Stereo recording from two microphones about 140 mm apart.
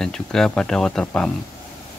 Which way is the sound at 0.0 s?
5° left (ahead or behind).